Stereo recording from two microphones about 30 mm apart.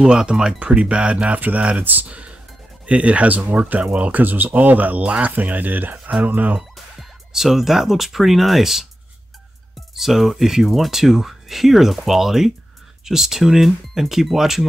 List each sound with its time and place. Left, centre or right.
0.0 s speech: right
1.8 s speech: right
2.0 s speech: right
3.7 s speech: right
5.2 s speech: right
6.2 s speech: right
7.3 s speech: centre
9.9 s speech: centre